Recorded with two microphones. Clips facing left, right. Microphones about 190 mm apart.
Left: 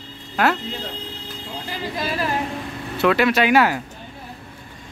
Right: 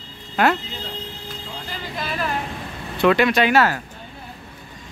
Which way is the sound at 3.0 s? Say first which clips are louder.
Right 1 dB; 5° left (ahead or behind).